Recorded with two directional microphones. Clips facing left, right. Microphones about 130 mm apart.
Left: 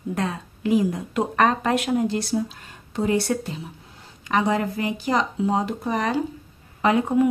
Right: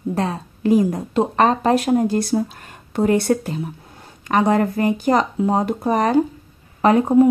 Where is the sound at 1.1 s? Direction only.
30° right (ahead or behind).